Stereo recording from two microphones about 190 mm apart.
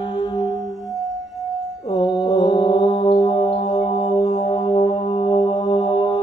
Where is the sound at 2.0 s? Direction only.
30° left (ahead or behind).